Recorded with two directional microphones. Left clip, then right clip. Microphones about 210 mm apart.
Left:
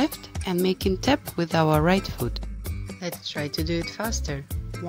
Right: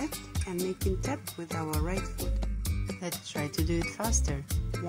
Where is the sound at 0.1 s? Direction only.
Centre (ahead or behind).